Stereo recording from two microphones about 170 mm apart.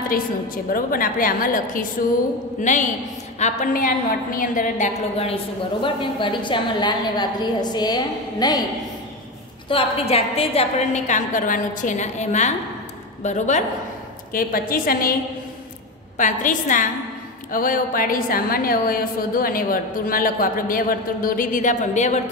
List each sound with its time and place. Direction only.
0.7 s a woman's voice: 55° left (ahead or behind); by 8.6 s 25° left (ahead or behind)
9.7 s a woman's voice: 35° left (ahead or behind)
14.3 s a woman's voice: 55° left (ahead or behind)
16.2 s a woman's voice: 50° left (ahead or behind)